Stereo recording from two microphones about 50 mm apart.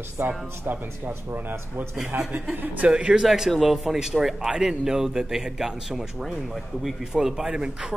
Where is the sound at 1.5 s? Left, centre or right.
Right.